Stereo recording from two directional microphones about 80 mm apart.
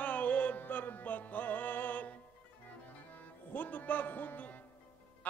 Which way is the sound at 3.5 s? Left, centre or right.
Left.